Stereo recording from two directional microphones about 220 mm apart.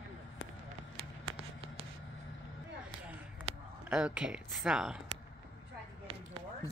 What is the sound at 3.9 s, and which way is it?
Speech, 5° right (ahead or behind).